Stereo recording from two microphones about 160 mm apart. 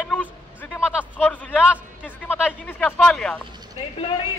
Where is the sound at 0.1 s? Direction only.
10° left (ahead or behind).